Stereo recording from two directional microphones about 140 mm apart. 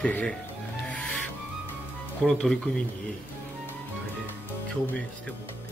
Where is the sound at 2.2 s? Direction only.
5° left (ahead or behind).